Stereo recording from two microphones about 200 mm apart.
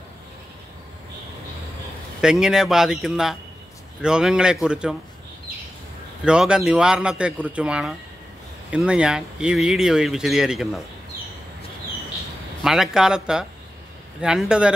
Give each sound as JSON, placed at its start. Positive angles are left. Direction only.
{"t": 2.2, "sound": "speech", "side_deg": -5}
{"t": 6.2, "sound": "speech", "side_deg": -5}
{"t": 12.6, "sound": "speech", "side_deg": 0}